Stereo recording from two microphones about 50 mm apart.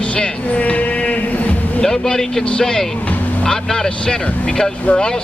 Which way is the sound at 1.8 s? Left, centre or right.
Centre.